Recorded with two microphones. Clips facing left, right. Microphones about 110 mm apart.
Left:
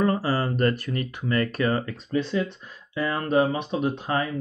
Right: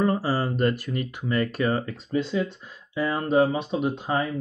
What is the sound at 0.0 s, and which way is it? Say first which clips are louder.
Speech: even; 15° right (ahead or behind).